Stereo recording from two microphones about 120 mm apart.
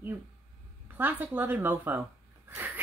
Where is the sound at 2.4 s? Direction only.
15° right (ahead or behind).